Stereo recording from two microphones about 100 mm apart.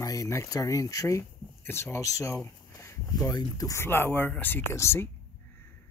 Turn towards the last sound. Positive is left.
turn(degrees=25)  # may be behind; listen again after turning